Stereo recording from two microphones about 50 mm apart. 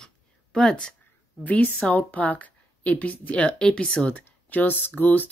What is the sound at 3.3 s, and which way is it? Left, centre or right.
Speech, left.